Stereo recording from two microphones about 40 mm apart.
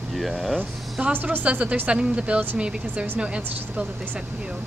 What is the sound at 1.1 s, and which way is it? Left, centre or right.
Speech, right.